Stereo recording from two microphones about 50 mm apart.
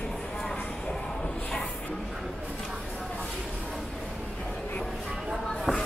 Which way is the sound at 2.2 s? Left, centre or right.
Centre.